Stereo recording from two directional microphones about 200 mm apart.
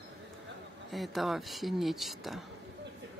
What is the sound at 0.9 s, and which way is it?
Speech, centre (ahead or behind).